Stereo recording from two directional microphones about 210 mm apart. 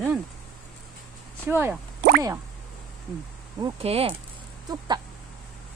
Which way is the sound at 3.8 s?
30° right (ahead or behind).